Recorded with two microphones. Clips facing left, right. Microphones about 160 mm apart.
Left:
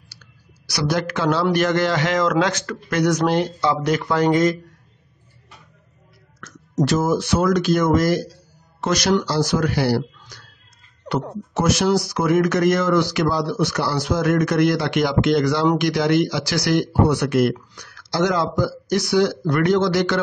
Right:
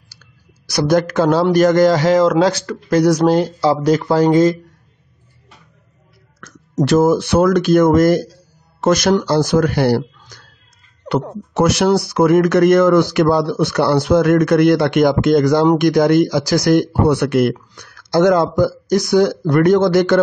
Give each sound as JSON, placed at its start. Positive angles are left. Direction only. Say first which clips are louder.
{"t": 0.1, "sound": "speech", "louder": "right 1 dB", "side_deg": -45}
{"t": 6.4, "sound": "speech", "louder": "right 3 dB", "side_deg": -60}
{"t": 11.1, "sound": "speech", "louder": "right 5 dB", "side_deg": -65}